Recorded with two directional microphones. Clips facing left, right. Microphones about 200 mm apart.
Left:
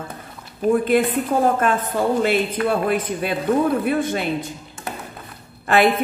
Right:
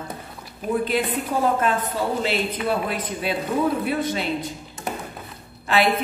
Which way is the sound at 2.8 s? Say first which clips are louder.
Left 5 dB; 50° left (ahead or behind).